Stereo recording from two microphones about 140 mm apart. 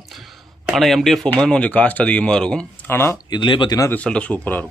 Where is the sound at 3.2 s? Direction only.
35° left (ahead or behind).